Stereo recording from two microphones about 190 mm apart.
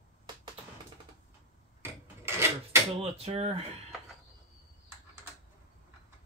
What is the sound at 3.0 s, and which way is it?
Speech, 35° right (ahead or behind).